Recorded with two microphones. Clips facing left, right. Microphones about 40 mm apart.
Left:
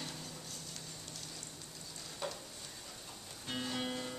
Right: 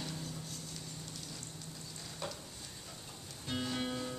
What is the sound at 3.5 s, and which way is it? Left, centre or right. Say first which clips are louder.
Music: right 2 dB; centre.